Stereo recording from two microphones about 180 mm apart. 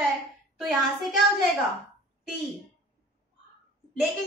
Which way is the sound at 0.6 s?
Centre (ahead or behind).